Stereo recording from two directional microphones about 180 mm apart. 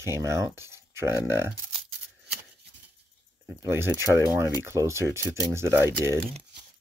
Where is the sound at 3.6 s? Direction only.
15° right (ahead or behind).